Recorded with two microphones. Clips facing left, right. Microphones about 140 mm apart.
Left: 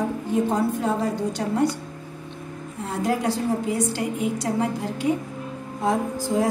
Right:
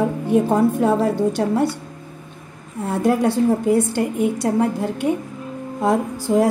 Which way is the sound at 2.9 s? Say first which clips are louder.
Right 6 dB; 50° right (ahead or behind).